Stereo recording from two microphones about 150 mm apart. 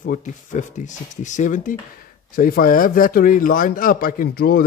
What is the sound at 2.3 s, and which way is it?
Speech, 75° left (ahead or behind).